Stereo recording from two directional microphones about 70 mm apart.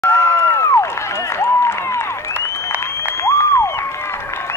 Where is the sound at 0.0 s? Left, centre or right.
Left.